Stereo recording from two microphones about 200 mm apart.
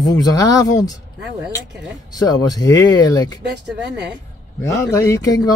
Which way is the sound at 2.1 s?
20° left (ahead or behind).